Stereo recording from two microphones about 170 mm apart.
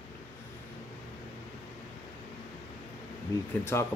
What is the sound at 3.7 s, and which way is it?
Speech, 15° left (ahead or behind).